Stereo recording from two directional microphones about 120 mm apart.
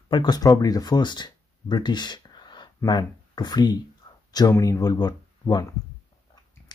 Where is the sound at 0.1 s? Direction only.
35° left (ahead or behind).